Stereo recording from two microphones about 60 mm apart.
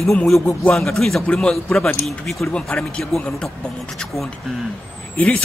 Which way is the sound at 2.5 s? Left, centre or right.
Centre.